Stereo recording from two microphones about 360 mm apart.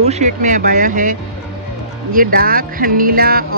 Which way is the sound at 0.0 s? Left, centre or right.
Centre.